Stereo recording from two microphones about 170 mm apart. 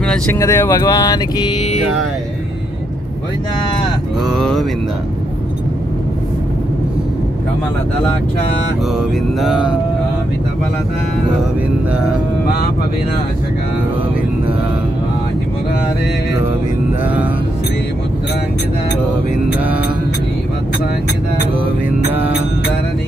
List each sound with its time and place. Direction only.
0.0 s speech: 5° left (ahead or behind)
0.4 s music: 15° left (ahead or behind)
4.3 s speech: 5° left (ahead or behind)
9.4 s speech: 5° right (ahead or behind)